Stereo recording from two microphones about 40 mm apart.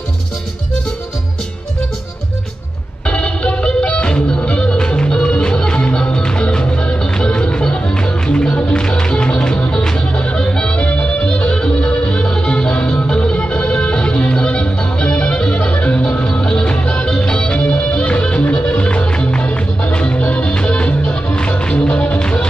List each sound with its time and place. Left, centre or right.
3.1 s music: left